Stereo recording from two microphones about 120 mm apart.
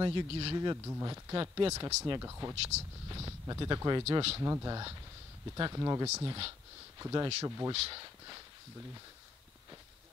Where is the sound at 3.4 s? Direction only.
35° right (ahead or behind).